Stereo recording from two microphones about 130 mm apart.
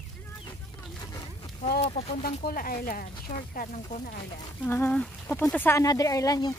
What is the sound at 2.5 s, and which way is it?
Speech, 90° left.